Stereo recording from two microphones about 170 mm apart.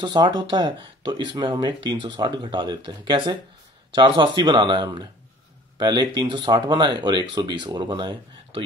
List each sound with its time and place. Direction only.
0.0 s speech: 25° right (ahead or behind)